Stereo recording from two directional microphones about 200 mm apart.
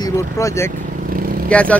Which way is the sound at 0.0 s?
15° left (ahead or behind).